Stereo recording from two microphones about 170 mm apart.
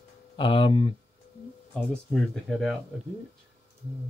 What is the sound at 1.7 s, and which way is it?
Speech, centre (ahead or behind).